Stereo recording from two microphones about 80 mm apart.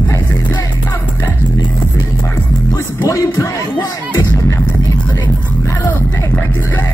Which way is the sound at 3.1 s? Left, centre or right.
Left.